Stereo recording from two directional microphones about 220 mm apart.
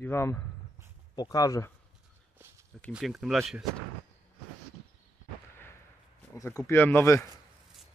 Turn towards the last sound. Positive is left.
turn(degrees=10)  # may be behind; listen again after turning